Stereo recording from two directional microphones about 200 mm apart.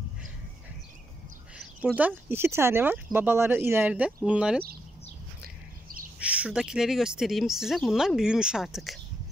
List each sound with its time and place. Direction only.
1.6 s speech: 10° right (ahead or behind)
6.1 s speech: 5° right (ahead or behind)